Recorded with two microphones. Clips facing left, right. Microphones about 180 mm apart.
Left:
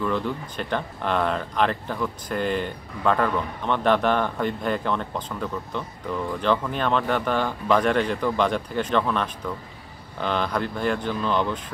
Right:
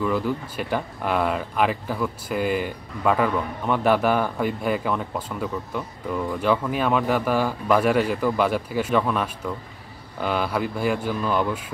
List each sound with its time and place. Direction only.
0.0 s speech: 5° right (ahead or behind)